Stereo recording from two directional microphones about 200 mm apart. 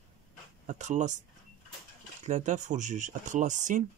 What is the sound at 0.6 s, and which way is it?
Speech, 35° right (ahead or behind).